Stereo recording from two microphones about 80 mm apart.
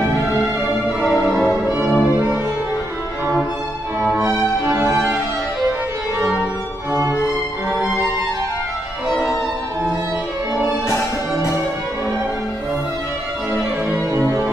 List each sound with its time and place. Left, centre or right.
1.8 s music: centre
4.0 s music: right